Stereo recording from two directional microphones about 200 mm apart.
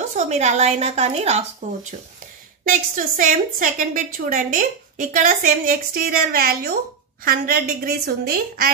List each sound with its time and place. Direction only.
0.2 s a woman's voice: 35° right (ahead or behind)
2.6 s a woman's voice: 40° right (ahead or behind)